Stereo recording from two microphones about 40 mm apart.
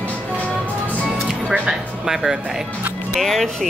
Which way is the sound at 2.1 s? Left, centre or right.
Centre.